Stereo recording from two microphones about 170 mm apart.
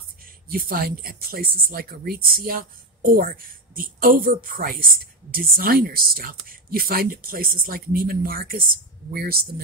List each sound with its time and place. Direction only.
0.2 s speech: 60° right (ahead or behind)